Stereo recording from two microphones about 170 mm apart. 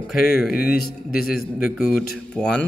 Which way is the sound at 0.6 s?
65° left (ahead or behind).